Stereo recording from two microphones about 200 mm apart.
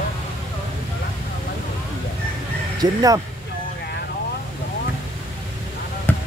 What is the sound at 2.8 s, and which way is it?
Speech, 20° right (ahead or behind).